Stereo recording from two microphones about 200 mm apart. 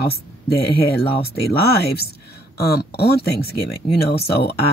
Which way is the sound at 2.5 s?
55° left (ahead or behind).